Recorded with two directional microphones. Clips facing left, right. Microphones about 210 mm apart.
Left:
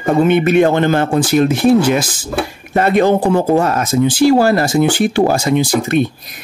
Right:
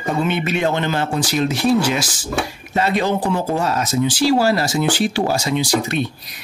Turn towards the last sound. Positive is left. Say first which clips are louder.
# left 5 dB
turn(degrees=50)  # may be behind; listen again after turning